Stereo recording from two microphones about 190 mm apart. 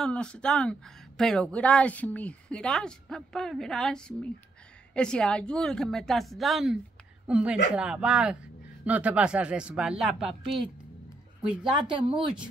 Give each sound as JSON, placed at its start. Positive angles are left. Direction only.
{"t": 0.0, "sound": "a woman's voice", "side_deg": 5}
{"t": 11.6, "sound": "speech", "side_deg": -25}